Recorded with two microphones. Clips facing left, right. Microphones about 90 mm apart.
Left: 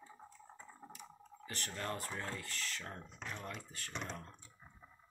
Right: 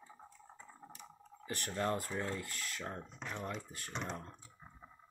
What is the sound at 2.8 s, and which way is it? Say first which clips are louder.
Speech: right 4 dB; 25° right (ahead or behind).